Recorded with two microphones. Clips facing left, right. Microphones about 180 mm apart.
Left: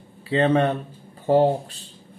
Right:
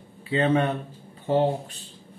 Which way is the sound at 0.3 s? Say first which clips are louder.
Left 3 dB; 40° left (ahead or behind).